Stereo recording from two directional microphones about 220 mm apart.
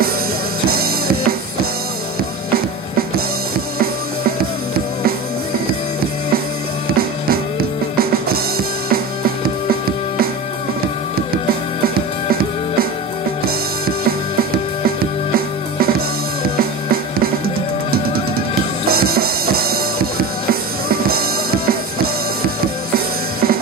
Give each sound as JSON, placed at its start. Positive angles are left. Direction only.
{"t": 0.7, "sound": "music", "side_deg": -45}
{"t": 6.9, "sound": "music", "side_deg": -45}
{"t": 15.3, "sound": "music", "side_deg": -45}
{"t": 18.9, "sound": "music", "side_deg": -45}